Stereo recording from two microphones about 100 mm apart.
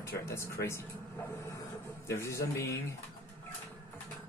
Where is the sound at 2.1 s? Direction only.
30° left (ahead or behind).